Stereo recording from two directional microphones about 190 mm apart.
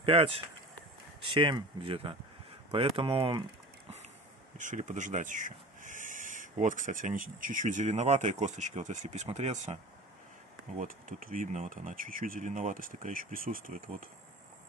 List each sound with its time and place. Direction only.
0.0 s speech: 30° right (ahead or behind)
4.6 s speech: 40° right (ahead or behind)
10.8 s speech: 45° right (ahead or behind)